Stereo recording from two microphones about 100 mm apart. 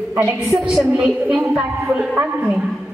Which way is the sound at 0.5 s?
5° right (ahead or behind).